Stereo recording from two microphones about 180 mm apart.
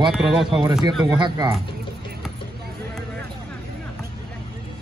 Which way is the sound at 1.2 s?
25° right (ahead or behind).